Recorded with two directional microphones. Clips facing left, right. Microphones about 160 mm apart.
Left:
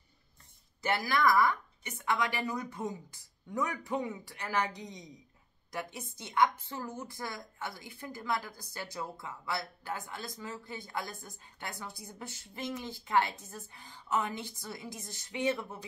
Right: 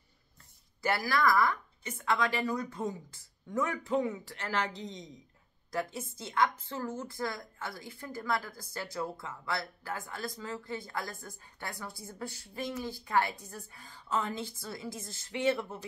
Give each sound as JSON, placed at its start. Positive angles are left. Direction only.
{"t": 0.8, "sound": "a woman's voice", "side_deg": 20}